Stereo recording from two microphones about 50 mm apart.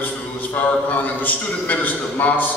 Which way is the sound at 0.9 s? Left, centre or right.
Left.